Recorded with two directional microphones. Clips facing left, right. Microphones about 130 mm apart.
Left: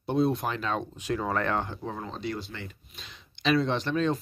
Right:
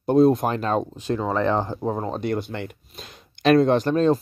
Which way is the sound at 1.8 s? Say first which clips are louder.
Right 10 dB; 45° right (ahead or behind).